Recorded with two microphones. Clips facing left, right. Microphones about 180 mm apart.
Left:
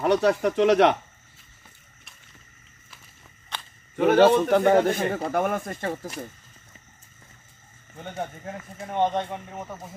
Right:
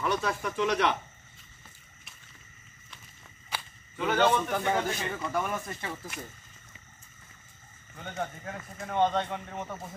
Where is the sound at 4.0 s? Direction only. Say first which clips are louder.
Left 9 dB; 55° left (ahead or behind).